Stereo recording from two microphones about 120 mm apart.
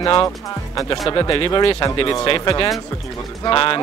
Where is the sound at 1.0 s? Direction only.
40° left (ahead or behind).